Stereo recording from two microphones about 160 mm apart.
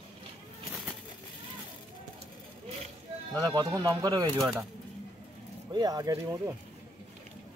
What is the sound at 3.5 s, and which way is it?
Speech, 25° right (ahead or behind).